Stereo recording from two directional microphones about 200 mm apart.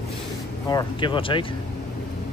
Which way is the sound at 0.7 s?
20° left (ahead or behind).